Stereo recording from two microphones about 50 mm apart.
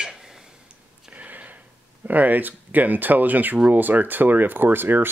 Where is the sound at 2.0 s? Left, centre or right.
Right.